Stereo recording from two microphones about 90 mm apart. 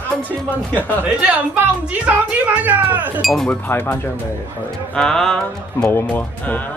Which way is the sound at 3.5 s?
25° left (ahead or behind).